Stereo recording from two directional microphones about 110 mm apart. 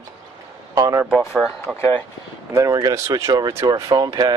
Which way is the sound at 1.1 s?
5° right (ahead or behind).